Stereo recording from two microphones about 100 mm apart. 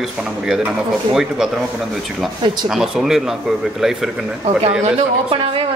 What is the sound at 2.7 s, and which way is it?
A man's voice, 5° right (ahead or behind).